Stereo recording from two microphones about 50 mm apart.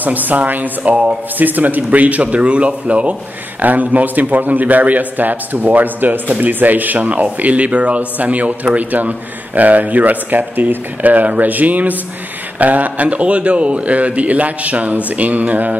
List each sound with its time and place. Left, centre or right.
0.0 s a man's voice: right